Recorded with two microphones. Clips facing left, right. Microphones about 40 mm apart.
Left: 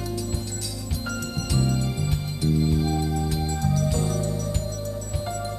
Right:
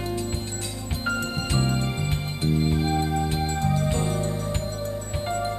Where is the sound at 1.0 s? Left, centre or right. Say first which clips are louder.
Right 5 dB; right.